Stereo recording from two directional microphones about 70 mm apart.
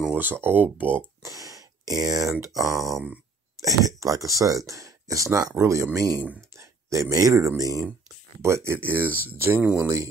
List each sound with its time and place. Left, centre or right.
0.1 s speech: right
1.2 s a sound: right
2.4 s speech: right